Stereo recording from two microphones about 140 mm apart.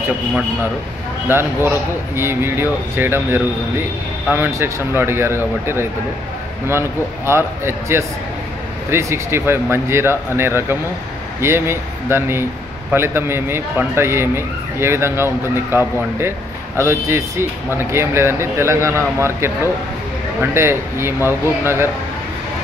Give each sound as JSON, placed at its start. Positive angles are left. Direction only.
{"t": 1.3, "sound": "speech", "side_deg": -15}
{"t": 7.2, "sound": "speech", "side_deg": -20}